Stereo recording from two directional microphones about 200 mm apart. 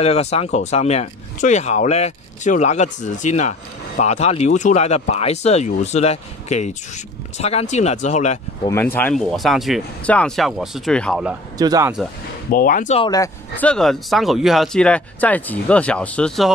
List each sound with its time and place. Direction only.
0.0 s speech: 30° left (ahead or behind)
8.6 s speech: 10° left (ahead or behind)
11.5 s speech: 20° right (ahead or behind)
12.4 s speech: 45° left (ahead or behind)
13.0 s speech: 20° left (ahead or behind)
13.6 s speech: 5° left (ahead or behind)